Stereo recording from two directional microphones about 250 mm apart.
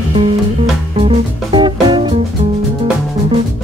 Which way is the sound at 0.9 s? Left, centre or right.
Right.